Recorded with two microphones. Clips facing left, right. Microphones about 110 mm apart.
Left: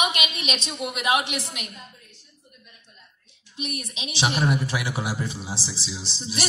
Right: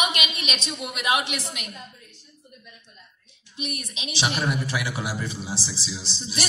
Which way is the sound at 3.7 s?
25° left (ahead or behind).